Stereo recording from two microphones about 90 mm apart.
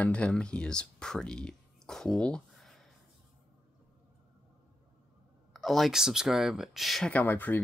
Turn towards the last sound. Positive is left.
turn(degrees=20)  # may be behind; listen again after turning